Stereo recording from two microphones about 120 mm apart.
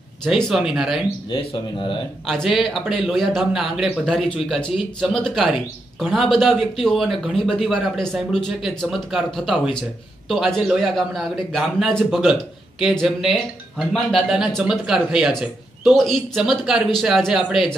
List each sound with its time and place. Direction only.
0.2 s a man's voice: centre (ahead or behind)
1.3 s speech: 50° left (ahead or behind)
2.2 s a man's voice: centre (ahead or behind)